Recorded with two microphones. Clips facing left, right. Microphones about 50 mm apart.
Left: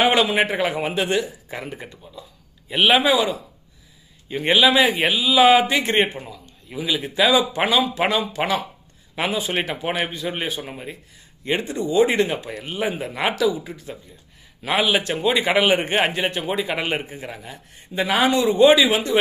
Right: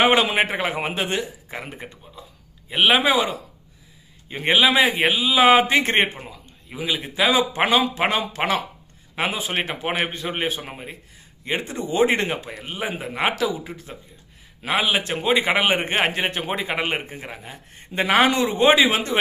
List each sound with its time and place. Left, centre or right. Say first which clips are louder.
0.0 s a man's voice: even; right
3.0 s speech: left 1 dB; right
4.4 s a man's voice: left 1 dB; right
6.8 s a man's voice: left 2 dB; right
7.2 s speech: even; right
9.1 s a man's voice: left 1 dB; right
12.6 s speech: left 4 dB; centre
13.2 s a man's voice: left 2 dB; right
14.7 s speech: left 2 dB; centre
15.1 s a man's voice: right 1 dB; right
17.9 s speech: right 1 dB; right